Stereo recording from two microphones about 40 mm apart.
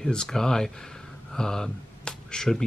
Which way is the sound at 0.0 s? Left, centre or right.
Centre.